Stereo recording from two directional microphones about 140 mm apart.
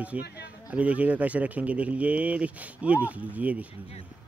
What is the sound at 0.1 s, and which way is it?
Speech, 10° right (ahead or behind).